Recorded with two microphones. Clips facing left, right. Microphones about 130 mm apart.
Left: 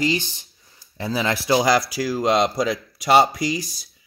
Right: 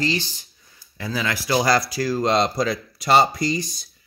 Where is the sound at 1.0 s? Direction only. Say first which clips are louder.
Left 3 dB; 25° left (ahead or behind).